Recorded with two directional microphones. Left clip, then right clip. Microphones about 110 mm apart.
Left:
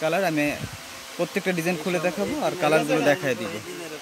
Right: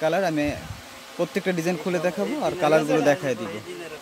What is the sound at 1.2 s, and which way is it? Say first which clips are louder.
Speech: even; 15° right (ahead or behind).